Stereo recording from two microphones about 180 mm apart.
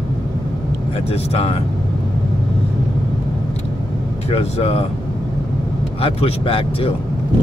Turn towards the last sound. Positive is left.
turn(degrees=30)  # may be behind; listen again after turning